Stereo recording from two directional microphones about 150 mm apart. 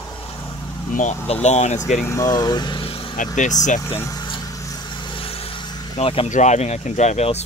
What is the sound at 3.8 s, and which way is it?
Speech, 15° left (ahead or behind).